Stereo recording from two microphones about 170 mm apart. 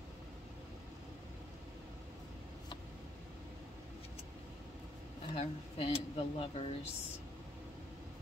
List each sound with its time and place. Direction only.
5.3 s speech: 35° left (ahead or behind)